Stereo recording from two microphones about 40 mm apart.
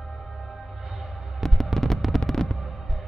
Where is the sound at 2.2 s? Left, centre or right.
Centre.